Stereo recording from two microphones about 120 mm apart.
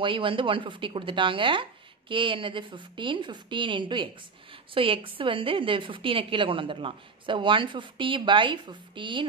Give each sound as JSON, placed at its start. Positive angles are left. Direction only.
{"t": 0.0, "sound": "speech", "side_deg": -45}